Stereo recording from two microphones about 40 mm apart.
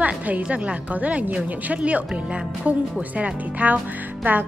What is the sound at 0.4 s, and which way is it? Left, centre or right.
A woman's voice, right.